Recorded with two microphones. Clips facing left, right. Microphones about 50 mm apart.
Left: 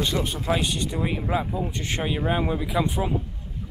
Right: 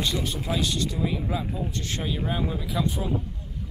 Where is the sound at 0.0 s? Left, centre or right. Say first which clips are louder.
Left 2 dB; left.